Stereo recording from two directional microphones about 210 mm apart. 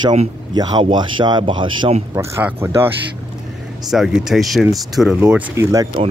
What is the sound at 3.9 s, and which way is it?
Speech, centre (ahead or behind).